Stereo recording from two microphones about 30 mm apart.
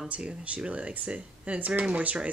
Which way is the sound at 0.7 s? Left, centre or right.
Right.